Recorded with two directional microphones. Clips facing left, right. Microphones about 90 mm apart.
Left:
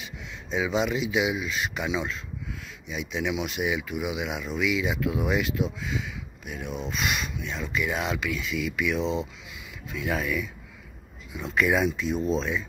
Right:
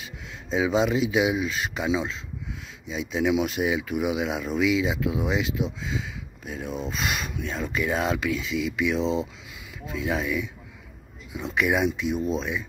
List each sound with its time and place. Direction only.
0.0 s speech: 30° right (ahead or behind)
5.9 s speech: 30° right (ahead or behind)
11.5 s speech: 15° right (ahead or behind)